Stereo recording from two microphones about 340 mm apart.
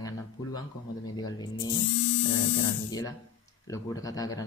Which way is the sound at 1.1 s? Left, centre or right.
Centre.